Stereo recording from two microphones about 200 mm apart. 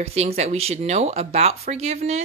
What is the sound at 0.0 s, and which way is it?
Speech, 30° right (ahead or behind).